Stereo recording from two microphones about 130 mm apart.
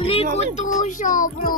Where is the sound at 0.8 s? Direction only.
80° left.